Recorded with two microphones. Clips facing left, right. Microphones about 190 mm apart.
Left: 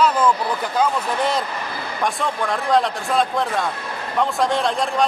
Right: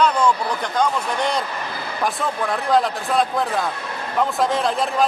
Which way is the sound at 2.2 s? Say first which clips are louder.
Even; centre (ahead or behind).